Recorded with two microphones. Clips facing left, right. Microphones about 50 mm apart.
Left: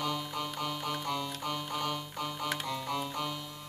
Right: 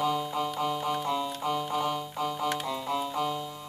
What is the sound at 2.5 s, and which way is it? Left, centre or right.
Music, centre.